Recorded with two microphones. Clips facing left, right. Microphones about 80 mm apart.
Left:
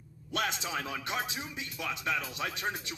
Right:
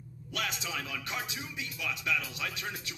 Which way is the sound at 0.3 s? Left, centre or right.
Left.